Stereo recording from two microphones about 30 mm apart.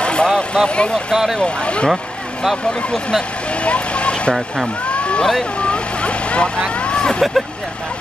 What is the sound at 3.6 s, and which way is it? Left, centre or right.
Vehicle, left.